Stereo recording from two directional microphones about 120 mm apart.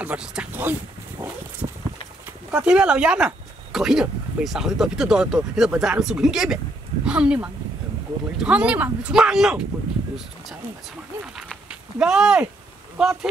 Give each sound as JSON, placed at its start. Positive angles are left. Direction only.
{"t": 0.0, "sound": "speech", "side_deg": -10}
{"t": 1.6, "sound": "a sound", "side_deg": -45}
{"t": 2.5, "sound": "speech", "side_deg": -10}
{"t": 12.0, "sound": "speech", "side_deg": -5}